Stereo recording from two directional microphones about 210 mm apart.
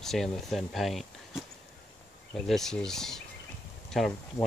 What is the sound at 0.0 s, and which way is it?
Speech, centre (ahead or behind).